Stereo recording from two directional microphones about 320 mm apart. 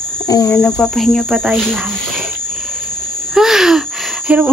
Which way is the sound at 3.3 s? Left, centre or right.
Centre.